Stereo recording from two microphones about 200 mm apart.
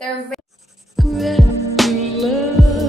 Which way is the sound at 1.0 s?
Centre (ahead or behind).